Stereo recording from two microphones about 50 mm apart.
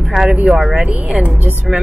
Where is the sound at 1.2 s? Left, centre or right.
Right.